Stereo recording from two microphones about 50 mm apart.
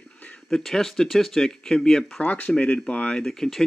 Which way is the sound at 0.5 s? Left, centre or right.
Centre.